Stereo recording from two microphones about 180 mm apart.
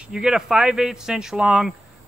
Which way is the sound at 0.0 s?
5° right (ahead or behind).